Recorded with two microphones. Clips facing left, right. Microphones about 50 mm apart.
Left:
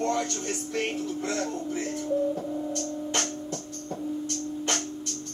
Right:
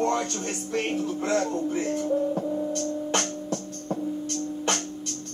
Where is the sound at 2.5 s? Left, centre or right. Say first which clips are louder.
Right 3 dB; right.